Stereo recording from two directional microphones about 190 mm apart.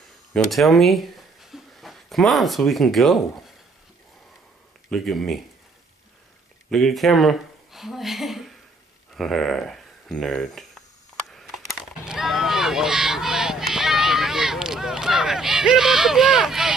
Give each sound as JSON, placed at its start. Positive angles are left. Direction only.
{"t": 0.3, "sound": "speech", "side_deg": 0}
{"t": 4.8, "sound": "speech", "side_deg": 0}
{"t": 6.7, "sound": "speech", "side_deg": 0}
{"t": 11.3, "sound": "a sound", "side_deg": 0}